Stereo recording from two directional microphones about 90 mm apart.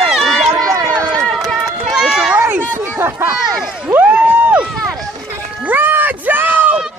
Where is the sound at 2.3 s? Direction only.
20° right (ahead or behind).